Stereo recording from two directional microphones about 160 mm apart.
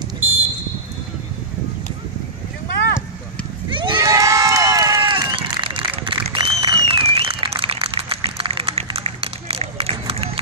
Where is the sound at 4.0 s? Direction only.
20° right (ahead or behind).